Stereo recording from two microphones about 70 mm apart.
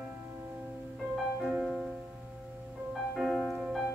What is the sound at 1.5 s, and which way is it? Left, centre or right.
Music, centre.